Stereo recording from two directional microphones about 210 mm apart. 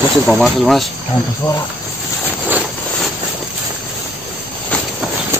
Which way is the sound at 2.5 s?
5° right (ahead or behind).